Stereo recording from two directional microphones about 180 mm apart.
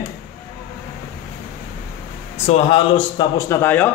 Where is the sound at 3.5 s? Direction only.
10° left (ahead or behind).